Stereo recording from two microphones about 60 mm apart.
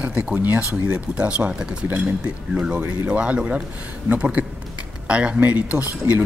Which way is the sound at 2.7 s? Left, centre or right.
Right.